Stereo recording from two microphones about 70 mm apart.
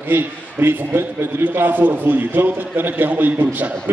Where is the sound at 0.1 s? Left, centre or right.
Right.